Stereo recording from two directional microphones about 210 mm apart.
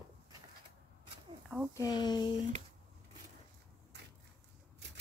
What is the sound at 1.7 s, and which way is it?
Speech, 20° left (ahead or behind).